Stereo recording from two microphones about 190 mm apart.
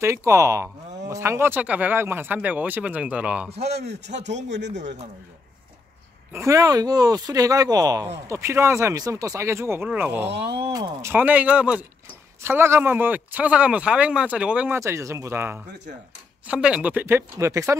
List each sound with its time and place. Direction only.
0.0 s speech: 15° right (ahead or behind)
3.5 s speech: 60° right (ahead or behind)
4.2 s speech: 40° right (ahead or behind)
4.5 s speech: 65° right (ahead or behind)
6.3 s speech: 15° right (ahead or behind)
10.3 s speech: 60° right (ahead or behind)
10.7 s speech: 20° right (ahead or behind)